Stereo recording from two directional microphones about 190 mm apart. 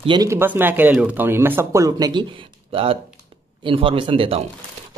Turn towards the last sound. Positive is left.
turn(degrees=-25)  # may be behind; listen again after turning